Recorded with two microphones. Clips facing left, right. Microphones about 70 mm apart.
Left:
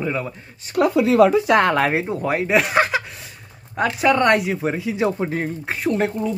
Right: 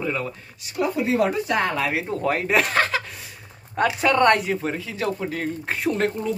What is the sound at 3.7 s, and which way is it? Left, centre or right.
Speech, centre.